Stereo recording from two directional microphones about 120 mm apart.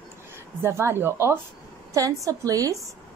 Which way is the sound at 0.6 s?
20° right (ahead or behind).